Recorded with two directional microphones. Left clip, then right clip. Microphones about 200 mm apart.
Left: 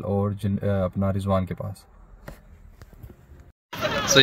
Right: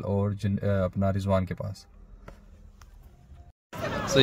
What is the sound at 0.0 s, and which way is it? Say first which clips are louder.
Speech: left 3 dB; 5° left (ahead or behind).